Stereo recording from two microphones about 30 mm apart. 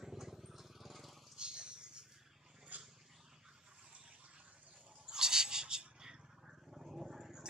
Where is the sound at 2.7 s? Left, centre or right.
Right.